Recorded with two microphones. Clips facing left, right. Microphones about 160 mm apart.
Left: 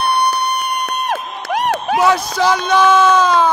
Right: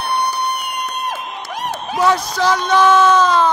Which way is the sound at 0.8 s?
70° left (ahead or behind).